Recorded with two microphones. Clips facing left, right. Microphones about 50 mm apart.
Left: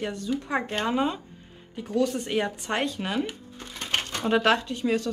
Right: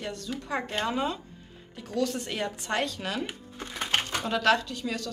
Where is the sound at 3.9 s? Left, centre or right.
Centre.